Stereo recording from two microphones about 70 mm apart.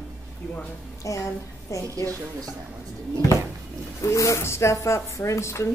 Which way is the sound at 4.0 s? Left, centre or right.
Left.